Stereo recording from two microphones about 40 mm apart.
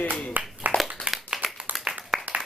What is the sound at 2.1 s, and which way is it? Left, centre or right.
Clapping, right.